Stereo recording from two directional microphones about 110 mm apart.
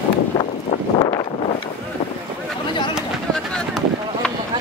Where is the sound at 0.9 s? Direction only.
40° left (ahead or behind).